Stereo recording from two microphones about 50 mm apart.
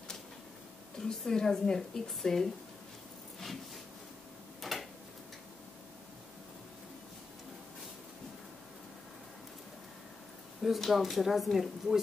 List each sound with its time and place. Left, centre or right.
0.9 s speech: centre
3.3 s a sound: centre
10.6 s speech: centre